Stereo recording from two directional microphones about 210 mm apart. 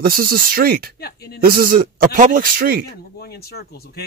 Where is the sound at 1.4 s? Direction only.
45° right (ahead or behind).